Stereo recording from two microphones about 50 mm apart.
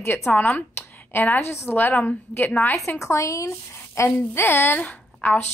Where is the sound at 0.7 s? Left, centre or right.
Left.